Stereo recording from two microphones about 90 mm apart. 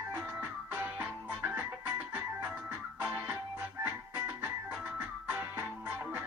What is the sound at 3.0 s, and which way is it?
Music, 10° right (ahead or behind).